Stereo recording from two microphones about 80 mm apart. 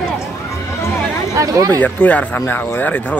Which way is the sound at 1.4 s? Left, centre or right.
Right.